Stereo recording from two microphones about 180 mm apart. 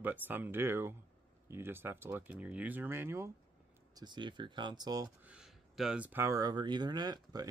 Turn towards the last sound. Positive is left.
turn(degrees=-20)  # may be behind; listen again after turning